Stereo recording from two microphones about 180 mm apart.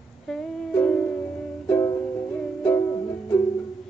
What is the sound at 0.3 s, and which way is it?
Music, 5° left (ahead or behind).